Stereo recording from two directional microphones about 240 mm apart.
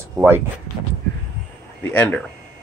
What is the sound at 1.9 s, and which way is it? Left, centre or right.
Speech, centre.